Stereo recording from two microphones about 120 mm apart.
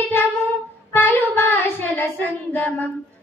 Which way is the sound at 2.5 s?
15° left (ahead or behind).